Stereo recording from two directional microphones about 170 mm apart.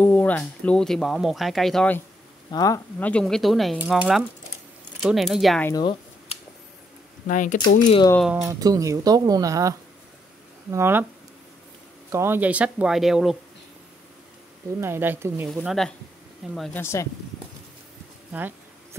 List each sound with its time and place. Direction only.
0.0 s speech: 10° left (ahead or behind)
2.5 s speech: 20° left (ahead or behind)
3.0 s speech: 5° left (ahead or behind)
7.2 s speech: 50° left (ahead or behind)
8.2 s speech: 5° right (ahead or behind)
8.5 s speech: 20° right (ahead or behind)
12.1 s speech: 15° right (ahead or behind)
14.8 s speech: 15° right (ahead or behind)
15.5 s speech: centre (ahead or behind)
16.7 s speech: 15° left (ahead or behind)